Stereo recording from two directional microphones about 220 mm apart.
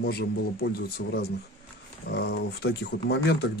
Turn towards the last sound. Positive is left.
turn(degrees=50)  # may be behind; listen again after turning